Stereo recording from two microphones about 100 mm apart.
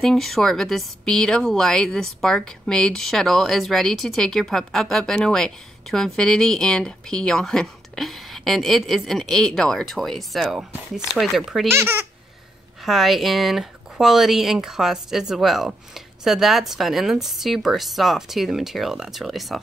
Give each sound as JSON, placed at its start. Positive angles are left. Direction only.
{"t": 0.0, "sound": "speech", "side_deg": 0}
{"t": 11.7, "sound": "speech", "side_deg": -25}
{"t": 12.8, "sound": "speech", "side_deg": 0}